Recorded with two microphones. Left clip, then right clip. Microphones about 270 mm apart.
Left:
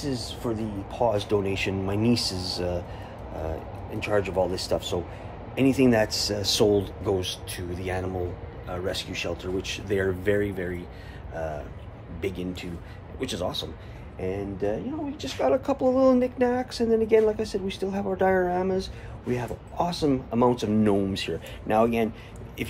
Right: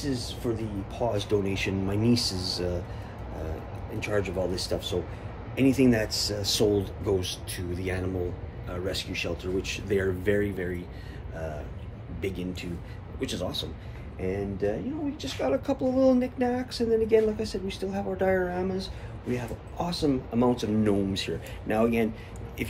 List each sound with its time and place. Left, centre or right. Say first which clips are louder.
0.0 s speech: left 1 dB; centre
4.0 s speech: left 4 dB; centre